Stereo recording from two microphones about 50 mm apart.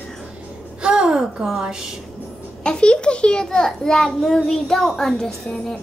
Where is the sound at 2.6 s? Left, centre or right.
Centre.